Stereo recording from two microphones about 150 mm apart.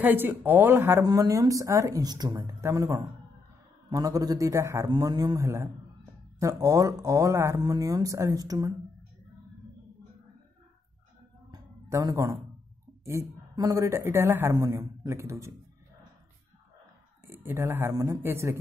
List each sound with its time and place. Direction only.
0.0 s speech: 15° right (ahead or behind)
11.5 s a sound: 20° right (ahead or behind)
13.6 s speech: 20° right (ahead or behind)
17.3 s speech: 15° right (ahead or behind)